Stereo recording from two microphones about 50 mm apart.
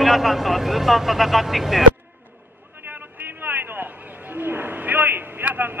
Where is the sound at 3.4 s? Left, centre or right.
Right.